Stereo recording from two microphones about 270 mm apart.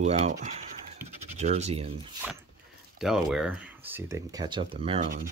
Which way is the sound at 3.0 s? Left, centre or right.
Centre.